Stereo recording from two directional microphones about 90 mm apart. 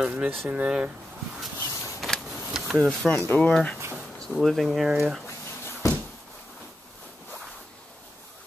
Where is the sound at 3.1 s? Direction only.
25° left (ahead or behind).